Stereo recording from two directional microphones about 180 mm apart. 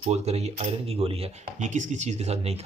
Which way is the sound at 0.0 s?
35° right (ahead or behind).